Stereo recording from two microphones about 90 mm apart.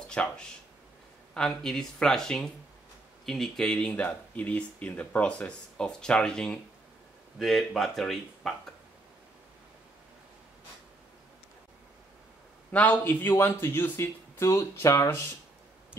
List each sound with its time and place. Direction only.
0.1 s speech: 10° left (ahead or behind)
12.7 s speech: 20° left (ahead or behind)